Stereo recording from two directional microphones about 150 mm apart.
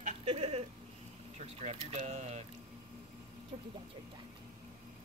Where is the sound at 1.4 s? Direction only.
45° right (ahead or behind).